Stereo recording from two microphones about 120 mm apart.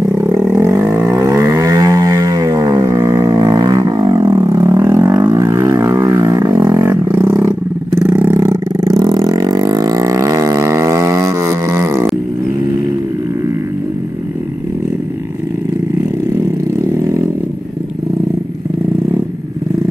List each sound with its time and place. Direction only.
0.6 s a sound: 25° right (ahead or behind)
8.0 s vehicle: 15° right (ahead or behind)
8.3 s roar: 20° right (ahead or behind)
8.8 s vehicle: 30° right (ahead or behind)
16.3 s vehicle: 20° right (ahead or behind)